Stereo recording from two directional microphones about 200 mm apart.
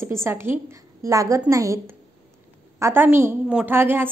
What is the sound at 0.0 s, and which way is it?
A woman's voice, 15° right (ahead or behind).